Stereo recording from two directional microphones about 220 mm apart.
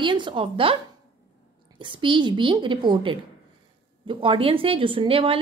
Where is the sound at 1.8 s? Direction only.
20° right (ahead or behind).